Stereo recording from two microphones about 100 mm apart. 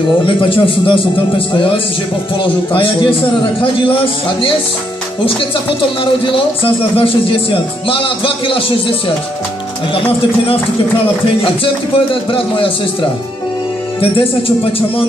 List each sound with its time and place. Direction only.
0.5 s speech: 60° left (ahead or behind)
6.2 s speech: 60° left (ahead or behind)
11.4 s speech: 60° left (ahead or behind)